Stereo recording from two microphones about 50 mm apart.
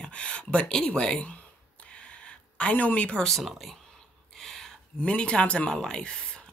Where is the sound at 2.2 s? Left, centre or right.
Left.